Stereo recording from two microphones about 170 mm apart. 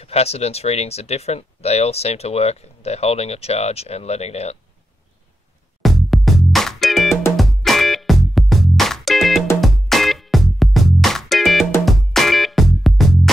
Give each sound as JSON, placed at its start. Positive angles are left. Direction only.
{"t": 0.0, "sound": "speech", "side_deg": 35}
{"t": 5.8, "sound": "music", "side_deg": 0}